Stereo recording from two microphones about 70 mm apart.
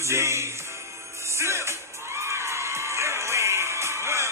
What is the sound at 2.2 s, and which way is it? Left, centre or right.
Crowd, right.